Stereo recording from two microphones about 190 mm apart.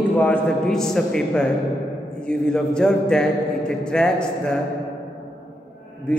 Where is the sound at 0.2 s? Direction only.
5° left (ahead or behind).